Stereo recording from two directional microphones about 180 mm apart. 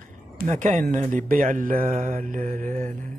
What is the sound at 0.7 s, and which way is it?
Mantra, 45° right (ahead or behind).